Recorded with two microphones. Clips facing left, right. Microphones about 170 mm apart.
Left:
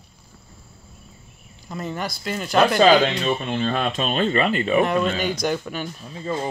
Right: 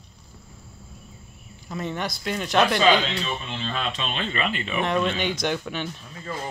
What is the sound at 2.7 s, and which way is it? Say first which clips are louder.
Speech: left 5 dB; 45° left (ahead or behind).